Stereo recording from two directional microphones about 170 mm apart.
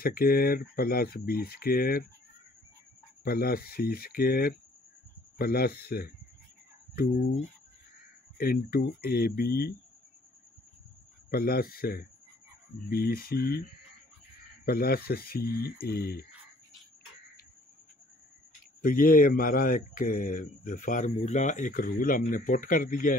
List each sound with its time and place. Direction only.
0.0 s speech: 60° left (ahead or behind)
3.3 s speech: 60° left (ahead or behind)
8.4 s speech: 60° left (ahead or behind)
11.2 s speech: 60° left (ahead or behind)
14.6 s speech: 65° left (ahead or behind)
18.8 s speech: 55° left (ahead or behind)